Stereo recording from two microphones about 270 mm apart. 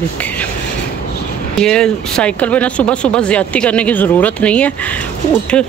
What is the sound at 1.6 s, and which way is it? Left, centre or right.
Speech, centre.